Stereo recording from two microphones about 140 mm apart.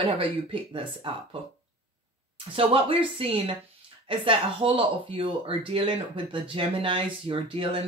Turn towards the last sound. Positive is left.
turn(degrees=-40)  # may be behind; listen again after turning